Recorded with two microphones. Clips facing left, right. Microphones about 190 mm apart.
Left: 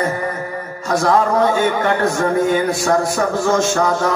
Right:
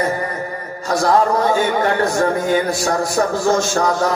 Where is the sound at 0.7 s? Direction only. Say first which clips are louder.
Even; 35° right (ahead or behind).